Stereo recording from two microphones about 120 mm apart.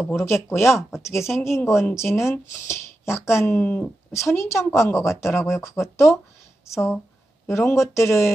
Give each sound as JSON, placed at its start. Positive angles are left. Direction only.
{"t": 0.2, "sound": "speech", "side_deg": 20}
{"t": 4.1, "sound": "speech", "side_deg": 25}